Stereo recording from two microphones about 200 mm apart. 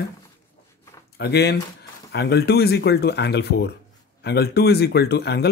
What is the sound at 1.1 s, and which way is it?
Speech, 55° left (ahead or behind).